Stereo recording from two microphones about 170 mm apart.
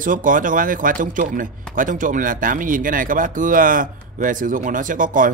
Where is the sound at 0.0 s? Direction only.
50° right (ahead or behind).